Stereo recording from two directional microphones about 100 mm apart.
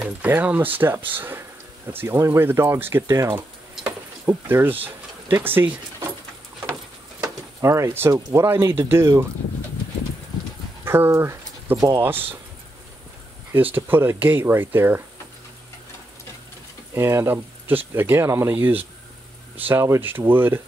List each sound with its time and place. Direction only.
0.0 s speech: 15° right (ahead or behind)
4.8 s a sound: 20° right (ahead or behind)
7.2 s a sound: 30° right (ahead or behind)
8.1 s speech: 30° right (ahead or behind)
10.8 s speech: 25° right (ahead or behind)
11.7 s speech: 40° right (ahead or behind)
12.0 s speech: 20° right (ahead or behind)
13.5 s speech: 20° right (ahead or behind)
16.9 s speech: 25° right (ahead or behind)